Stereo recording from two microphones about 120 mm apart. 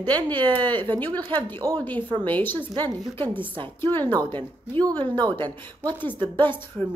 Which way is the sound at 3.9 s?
45° right (ahead or behind).